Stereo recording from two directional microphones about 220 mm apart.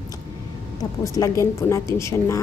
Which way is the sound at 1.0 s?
15° left (ahead or behind).